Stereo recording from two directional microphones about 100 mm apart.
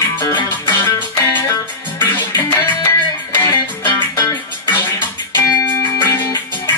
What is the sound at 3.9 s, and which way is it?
Music, 30° left (ahead or behind).